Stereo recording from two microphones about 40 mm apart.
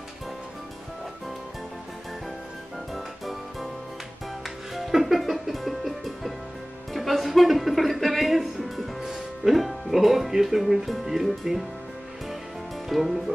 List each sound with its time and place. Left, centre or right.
4.7 s music: centre
6.9 s speech: centre
12.9 s music: centre